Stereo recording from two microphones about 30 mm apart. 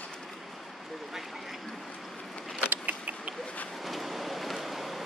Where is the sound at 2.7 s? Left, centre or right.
Right.